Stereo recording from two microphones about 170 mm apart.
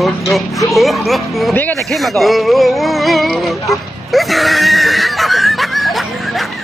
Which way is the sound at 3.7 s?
Centre (ahead or behind).